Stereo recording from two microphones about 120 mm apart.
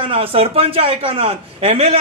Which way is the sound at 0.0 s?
50° right (ahead or behind).